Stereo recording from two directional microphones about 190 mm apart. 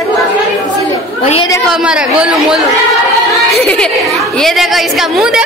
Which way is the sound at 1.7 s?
5° right (ahead or behind).